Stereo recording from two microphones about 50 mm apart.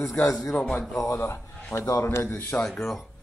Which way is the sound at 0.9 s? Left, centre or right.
Left.